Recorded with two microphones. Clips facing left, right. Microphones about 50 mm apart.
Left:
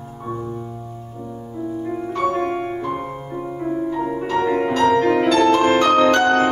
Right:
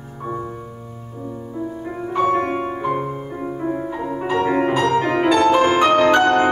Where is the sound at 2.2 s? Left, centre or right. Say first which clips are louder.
Right 1 dB; right.